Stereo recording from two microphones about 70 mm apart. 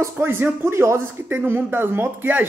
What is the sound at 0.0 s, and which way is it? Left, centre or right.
Speech, right.